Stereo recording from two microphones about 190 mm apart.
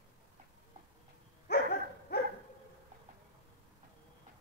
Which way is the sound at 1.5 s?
55° left (ahead or behind).